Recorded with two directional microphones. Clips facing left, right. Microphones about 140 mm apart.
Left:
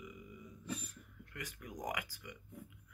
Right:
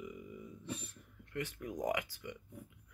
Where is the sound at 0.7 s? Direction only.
30° right (ahead or behind).